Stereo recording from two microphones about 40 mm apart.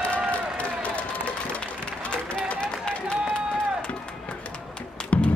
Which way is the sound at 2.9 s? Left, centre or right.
Centre.